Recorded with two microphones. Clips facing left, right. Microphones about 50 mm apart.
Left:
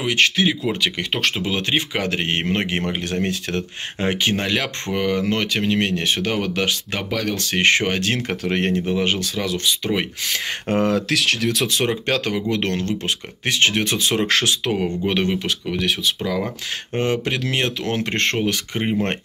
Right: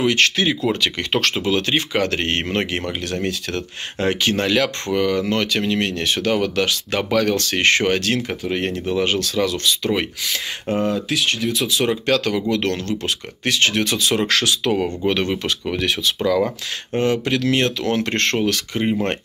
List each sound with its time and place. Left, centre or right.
0.0 s speech: centre
2.5 s speech: left
7.0 s speech: centre
7.3 s speech: centre
8.3 s speech: left
8.9 s speech: centre
10.2 s speech: left
10.8 s speech: left
11.8 s speech: left
15.0 s speech: centre
15.6 s speech: centre
16.9 s speech: left